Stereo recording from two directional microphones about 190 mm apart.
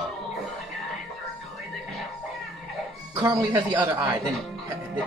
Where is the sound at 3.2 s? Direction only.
20° right (ahead or behind).